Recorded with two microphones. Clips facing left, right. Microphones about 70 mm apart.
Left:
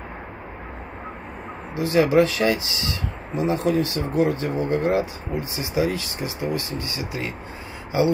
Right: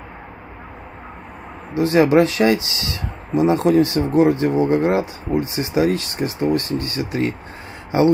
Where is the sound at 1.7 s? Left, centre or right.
Right.